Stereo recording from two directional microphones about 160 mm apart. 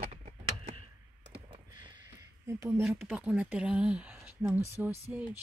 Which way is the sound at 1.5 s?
30° right (ahead or behind).